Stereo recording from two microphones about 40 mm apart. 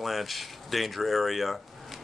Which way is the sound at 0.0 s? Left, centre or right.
Centre.